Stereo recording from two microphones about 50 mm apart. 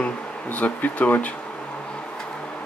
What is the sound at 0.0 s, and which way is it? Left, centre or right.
Speech, left.